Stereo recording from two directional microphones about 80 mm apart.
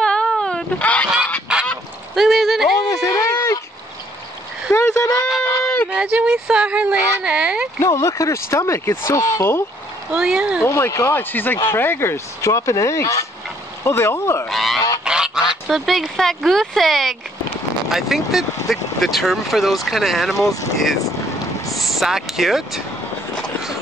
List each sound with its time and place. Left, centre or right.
0.0 s wail: centre
0.7 s speech: centre
1.5 s goose: centre
2.1 s a sound: centre
2.9 s a sound: left
4.7 s a sound: left
5.9 s speech: centre
7.8 s speech: left
10.1 s speech: centre
10.6 s speech: left
14.5 s goose: centre
15.7 s speech: centre